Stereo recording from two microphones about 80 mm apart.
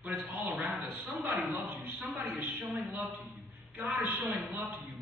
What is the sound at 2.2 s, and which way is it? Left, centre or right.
A woman's voice, right.